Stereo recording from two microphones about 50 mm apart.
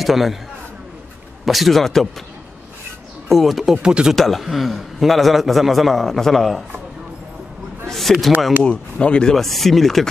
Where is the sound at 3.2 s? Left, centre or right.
Centre.